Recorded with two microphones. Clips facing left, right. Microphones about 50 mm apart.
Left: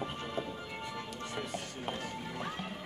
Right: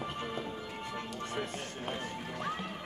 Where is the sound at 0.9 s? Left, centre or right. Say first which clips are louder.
Right 5 dB; right.